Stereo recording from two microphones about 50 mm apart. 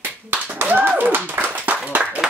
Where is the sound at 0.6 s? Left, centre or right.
Right.